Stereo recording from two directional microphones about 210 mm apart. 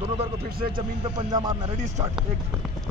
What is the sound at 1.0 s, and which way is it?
Speech, 20° right (ahead or behind).